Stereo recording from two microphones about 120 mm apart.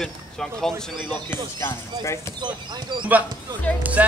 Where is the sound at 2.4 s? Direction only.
40° right (ahead or behind).